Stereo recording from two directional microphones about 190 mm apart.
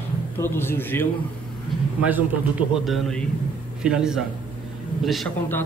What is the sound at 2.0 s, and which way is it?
A man's voice, 10° right (ahead or behind).